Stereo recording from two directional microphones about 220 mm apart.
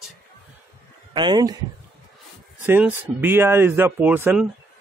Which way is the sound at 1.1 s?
20° right (ahead or behind).